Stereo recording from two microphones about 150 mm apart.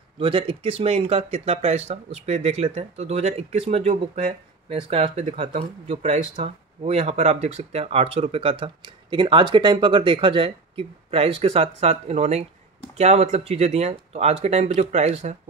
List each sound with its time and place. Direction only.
0.2 s speech: 35° right (ahead or behind)